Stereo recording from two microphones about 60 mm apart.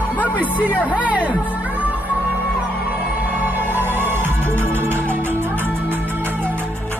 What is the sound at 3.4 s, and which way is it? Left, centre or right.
Music, right.